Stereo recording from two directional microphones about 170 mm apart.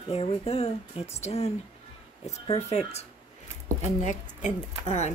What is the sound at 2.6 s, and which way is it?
Speech, 40° left (ahead or behind).